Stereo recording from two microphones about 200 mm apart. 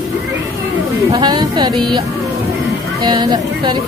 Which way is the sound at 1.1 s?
20° right (ahead or behind).